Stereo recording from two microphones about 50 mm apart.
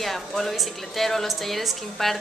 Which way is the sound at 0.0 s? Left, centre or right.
Centre.